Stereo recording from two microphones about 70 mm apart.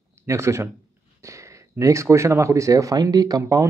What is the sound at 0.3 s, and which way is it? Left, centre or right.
A man's voice, right.